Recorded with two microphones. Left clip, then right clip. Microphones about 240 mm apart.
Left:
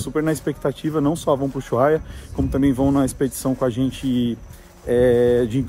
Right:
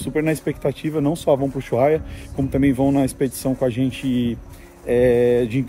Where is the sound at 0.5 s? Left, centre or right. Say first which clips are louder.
Even; centre.